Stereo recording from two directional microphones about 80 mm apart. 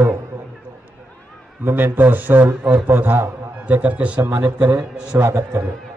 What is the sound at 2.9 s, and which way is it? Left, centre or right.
A man's voice, right.